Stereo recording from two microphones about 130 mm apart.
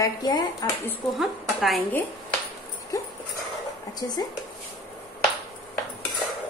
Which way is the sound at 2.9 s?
25° left (ahead or behind).